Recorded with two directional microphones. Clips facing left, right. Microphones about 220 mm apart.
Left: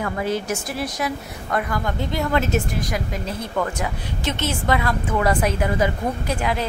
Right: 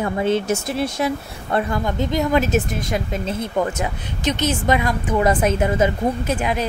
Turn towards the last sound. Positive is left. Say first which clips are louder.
# right 2 dB
turn(degrees=-20)  # may be behind; listen again after turning